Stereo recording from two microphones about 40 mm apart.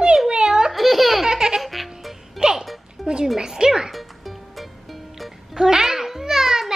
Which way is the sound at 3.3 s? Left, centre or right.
Centre.